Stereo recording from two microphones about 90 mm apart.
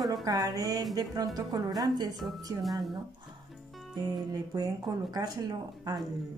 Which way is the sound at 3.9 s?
50° right (ahead or behind).